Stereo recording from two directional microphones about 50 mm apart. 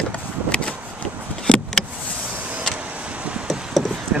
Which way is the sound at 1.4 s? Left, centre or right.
Centre.